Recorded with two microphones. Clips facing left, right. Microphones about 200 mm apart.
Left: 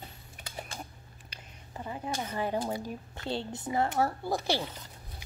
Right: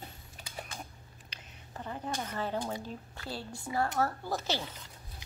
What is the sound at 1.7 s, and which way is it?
Speech, 10° left (ahead or behind).